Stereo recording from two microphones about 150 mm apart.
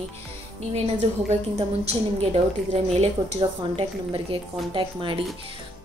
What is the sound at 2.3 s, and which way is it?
Speech, 45° right (ahead or behind).